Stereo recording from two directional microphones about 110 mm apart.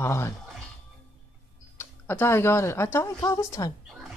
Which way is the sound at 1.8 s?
20° left (ahead or behind).